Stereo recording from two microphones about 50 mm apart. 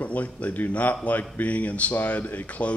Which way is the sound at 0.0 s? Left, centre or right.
Left.